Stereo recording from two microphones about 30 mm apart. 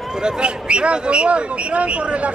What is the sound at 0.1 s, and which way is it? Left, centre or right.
Speech, right.